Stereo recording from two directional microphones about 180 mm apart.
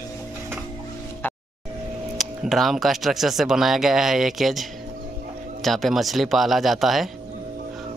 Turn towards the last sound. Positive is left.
turn(degrees=0)  # may be behind; listen again after turning